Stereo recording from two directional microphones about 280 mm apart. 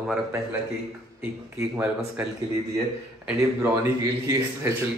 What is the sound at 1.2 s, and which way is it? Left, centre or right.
A man's voice, centre.